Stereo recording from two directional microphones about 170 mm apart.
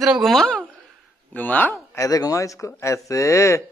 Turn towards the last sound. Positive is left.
turn(degrees=15)  # may be behind; listen again after turning